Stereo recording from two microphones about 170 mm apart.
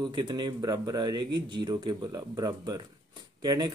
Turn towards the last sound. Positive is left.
turn(degrees=-20)  # may be behind; listen again after turning